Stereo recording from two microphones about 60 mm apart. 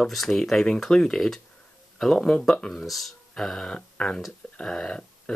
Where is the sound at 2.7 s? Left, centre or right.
Centre.